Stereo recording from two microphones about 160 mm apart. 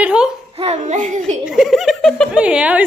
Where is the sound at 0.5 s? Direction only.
40° right (ahead or behind).